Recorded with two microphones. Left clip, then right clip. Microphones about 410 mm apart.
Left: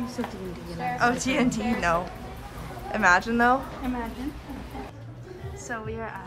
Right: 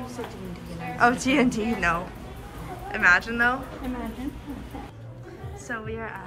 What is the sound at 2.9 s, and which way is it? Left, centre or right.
Speech, centre.